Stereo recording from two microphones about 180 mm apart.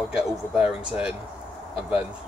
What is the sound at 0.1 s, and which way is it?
Speech, 5° right (ahead or behind).